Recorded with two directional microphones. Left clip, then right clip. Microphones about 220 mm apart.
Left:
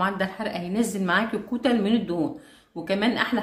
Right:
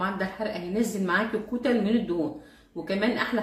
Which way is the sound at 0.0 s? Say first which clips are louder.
Left 3 dB; 45° left (ahead or behind).